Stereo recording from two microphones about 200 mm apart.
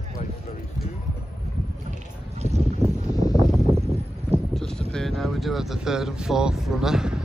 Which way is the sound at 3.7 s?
25° right (ahead or behind).